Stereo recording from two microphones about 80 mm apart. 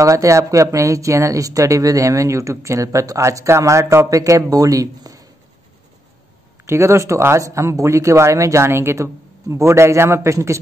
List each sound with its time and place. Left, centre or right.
0.0 s a woman's voice: right
6.6 s a woman's voice: right